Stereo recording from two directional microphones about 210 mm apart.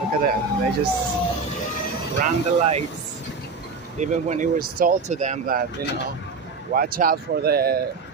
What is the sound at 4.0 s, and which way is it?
Speech, 35° right (ahead or behind).